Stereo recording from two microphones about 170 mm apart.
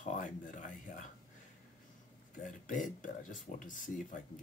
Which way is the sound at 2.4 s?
50° left (ahead or behind).